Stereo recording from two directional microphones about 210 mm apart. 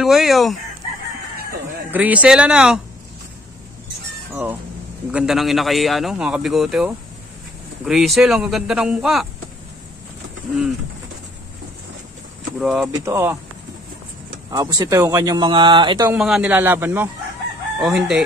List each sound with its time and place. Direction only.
0.0 s a man's voice: centre (ahead or behind)
1.9 s a man's voice: 5° right (ahead or behind)
4.3 s a man's voice: 10° right (ahead or behind)
12.5 s a man's voice: centre (ahead or behind)
14.5 s speech: 20° right (ahead or behind)
16.1 s a man's voice: 5° right (ahead or behind)